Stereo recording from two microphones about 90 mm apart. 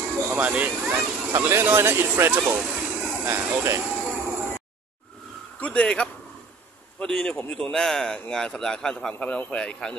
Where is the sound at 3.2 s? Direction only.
25° right (ahead or behind).